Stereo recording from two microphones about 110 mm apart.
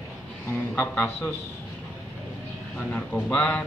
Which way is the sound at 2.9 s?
15° left (ahead or behind).